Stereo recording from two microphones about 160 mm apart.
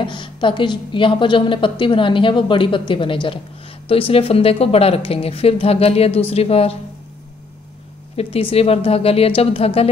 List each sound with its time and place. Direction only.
0.0 s a woman's voice: 30° left (ahead or behind)
8.2 s a woman's voice: 35° left (ahead or behind)